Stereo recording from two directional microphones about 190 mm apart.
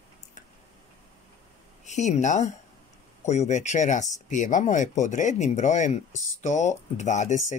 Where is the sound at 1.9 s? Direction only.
40° left (ahead or behind).